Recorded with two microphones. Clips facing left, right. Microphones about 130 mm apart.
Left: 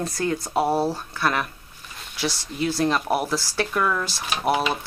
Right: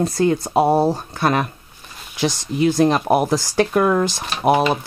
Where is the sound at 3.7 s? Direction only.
40° right (ahead or behind).